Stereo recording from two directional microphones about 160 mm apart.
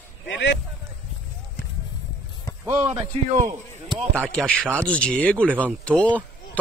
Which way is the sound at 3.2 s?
50° right (ahead or behind).